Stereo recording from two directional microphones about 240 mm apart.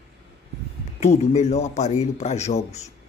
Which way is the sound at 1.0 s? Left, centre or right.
Left.